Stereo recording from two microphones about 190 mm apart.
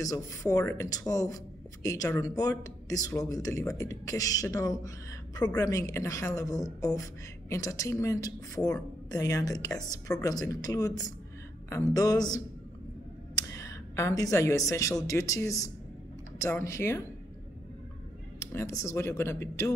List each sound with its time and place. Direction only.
0.0 s a woman's voice: 15° left (ahead or behind)
18.4 s speech: 15° left (ahead or behind)